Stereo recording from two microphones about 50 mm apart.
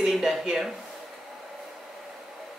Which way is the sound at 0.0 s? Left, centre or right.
Centre.